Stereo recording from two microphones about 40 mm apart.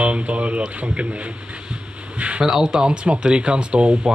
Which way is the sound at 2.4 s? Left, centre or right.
Centre.